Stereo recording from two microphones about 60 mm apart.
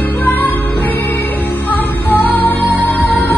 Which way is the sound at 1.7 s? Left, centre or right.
Left.